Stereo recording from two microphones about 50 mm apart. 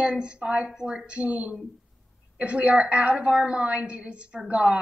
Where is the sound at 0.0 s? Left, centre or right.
Centre.